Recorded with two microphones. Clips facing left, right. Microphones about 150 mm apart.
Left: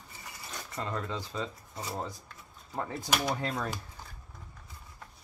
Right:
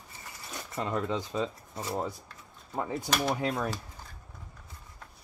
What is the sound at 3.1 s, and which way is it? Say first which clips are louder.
Speech: right 2 dB; centre (ahead or behind).